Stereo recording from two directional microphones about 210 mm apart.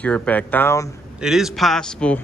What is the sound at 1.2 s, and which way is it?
Speech, centre (ahead or behind).